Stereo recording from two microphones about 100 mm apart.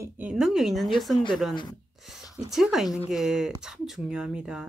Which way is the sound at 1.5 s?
50° left (ahead or behind).